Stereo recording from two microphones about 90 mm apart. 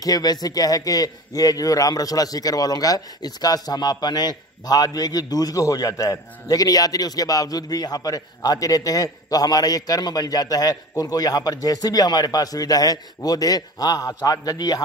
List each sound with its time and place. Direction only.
0.0 s a man's voice: 45° left (ahead or behind)